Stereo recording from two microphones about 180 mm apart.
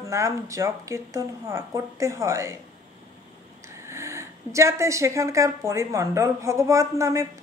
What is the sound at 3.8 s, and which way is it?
Speech, 15° right (ahead or behind).